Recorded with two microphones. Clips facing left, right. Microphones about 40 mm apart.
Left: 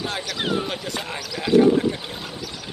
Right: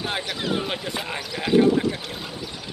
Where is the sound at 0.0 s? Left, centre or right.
Right.